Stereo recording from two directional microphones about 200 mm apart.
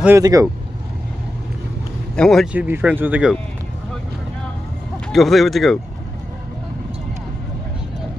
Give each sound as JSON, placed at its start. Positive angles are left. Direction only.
{"t": 0.0, "sound": "speech", "side_deg": -15}
{"t": 2.1, "sound": "speech", "side_deg": 0}
{"t": 5.1, "sound": "speech", "side_deg": 0}